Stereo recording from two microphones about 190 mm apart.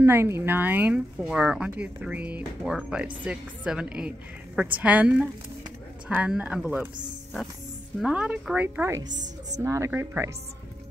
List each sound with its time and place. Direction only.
0.0 s a woman's voice: 15° right (ahead or behind)
8.0 s speech: 5° right (ahead or behind)
9.1 s a woman's voice: 40° right (ahead or behind)
9.6 s speech: 15° right (ahead or behind)